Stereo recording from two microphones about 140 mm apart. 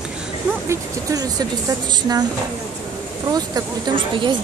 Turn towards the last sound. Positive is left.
turn(degrees=-35)  # may be behind; listen again after turning